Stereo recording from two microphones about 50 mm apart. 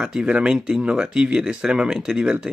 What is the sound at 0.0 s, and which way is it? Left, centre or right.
Speech, centre.